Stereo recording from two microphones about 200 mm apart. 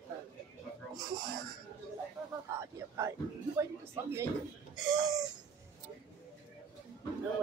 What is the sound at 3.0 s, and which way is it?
Speech, 15° right (ahead or behind).